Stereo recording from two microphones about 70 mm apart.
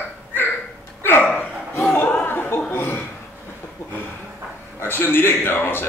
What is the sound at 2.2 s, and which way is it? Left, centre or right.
Chuckle, left.